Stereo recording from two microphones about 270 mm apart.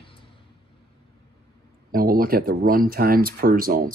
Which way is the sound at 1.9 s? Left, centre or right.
Right.